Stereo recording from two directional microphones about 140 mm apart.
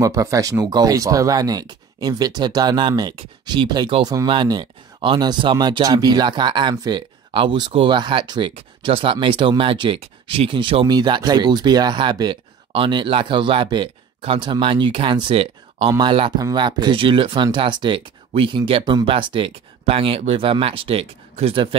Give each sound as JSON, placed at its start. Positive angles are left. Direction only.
{"t": 0.0, "sound": "speech", "side_deg": -25}